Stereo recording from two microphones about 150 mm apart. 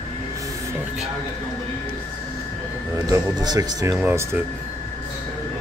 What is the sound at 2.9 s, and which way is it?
Speech, 25° right (ahead or behind).